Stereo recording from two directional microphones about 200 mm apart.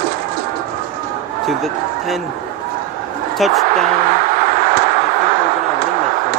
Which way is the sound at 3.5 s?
40° right (ahead or behind).